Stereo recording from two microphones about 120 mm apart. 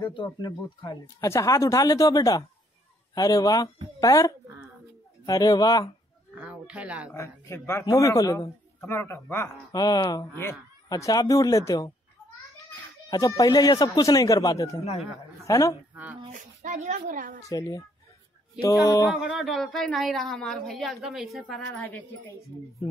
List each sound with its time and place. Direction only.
0.0 s speech: 40° left (ahead or behind)
1.2 s a man's voice: 25° left (ahead or behind)
6.4 s speech: 10° right (ahead or behind)
7.2 s a man's voice: 20° left (ahead or behind)
9.8 s a man's voice: 30° left (ahead or behind)
13.1 s a man's voice: 30° left (ahead or behind)
15.9 s speech: 15° right (ahead or behind)
16.3 s speech: 90° right
17.5 s a man's voice: 30° left (ahead or behind)
19.0 s speech: 5° right (ahead or behind)